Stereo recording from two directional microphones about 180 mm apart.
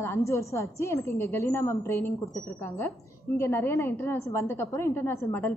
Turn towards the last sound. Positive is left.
turn(degrees=10)  # may be behind; listen again after turning